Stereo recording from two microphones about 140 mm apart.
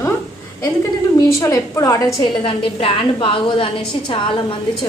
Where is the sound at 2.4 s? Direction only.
40° left (ahead or behind).